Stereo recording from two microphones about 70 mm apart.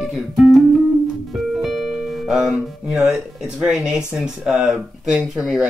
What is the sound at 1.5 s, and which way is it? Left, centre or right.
Music, centre.